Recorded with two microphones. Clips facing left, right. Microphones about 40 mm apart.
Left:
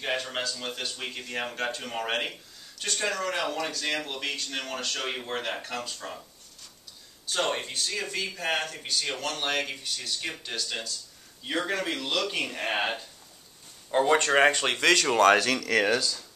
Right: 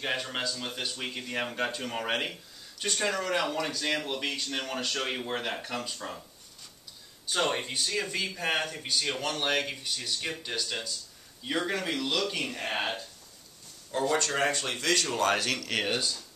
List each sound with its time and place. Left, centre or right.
0.0 s speech: centre
7.2 s speech: centre
12.6 s speech: left
13.8 s speech: left
14.3 s speech: left